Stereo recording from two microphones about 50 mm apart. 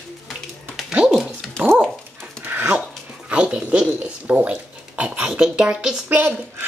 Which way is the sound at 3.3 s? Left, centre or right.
Right.